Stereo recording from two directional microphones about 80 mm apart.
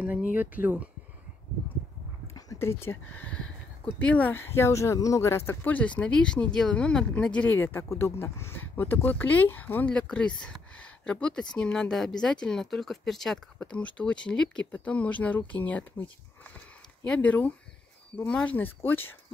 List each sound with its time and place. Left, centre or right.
0.0 s speech: centre
2.6 s speech: left
4.4 s speech: left; by 7.5 s centre
7.5 s speech: left; by 13.4 s centre
13.6 s speech: centre
17.0 s speech: centre
18.8 s speech: left